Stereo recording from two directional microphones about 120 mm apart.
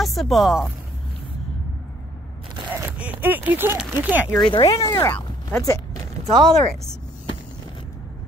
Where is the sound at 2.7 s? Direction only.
15° right (ahead or behind).